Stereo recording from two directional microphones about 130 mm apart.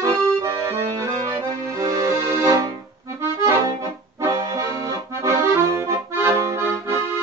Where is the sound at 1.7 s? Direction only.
25° right (ahead or behind).